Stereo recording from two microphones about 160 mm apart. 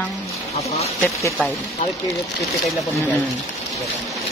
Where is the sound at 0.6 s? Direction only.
40° left (ahead or behind).